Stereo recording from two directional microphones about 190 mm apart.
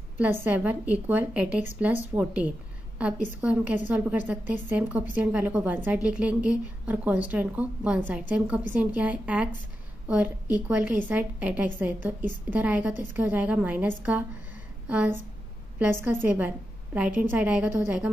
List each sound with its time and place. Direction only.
0.2 s a woman's voice: 10° right (ahead or behind)